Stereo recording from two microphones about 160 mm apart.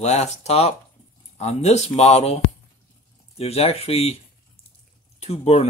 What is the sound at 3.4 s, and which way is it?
Speech, 40° left (ahead or behind).